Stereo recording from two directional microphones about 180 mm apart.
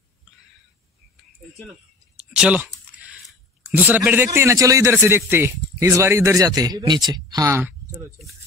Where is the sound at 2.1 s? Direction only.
5° right (ahead or behind).